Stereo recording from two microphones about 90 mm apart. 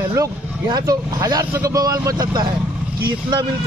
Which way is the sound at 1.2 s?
40° right (ahead or behind).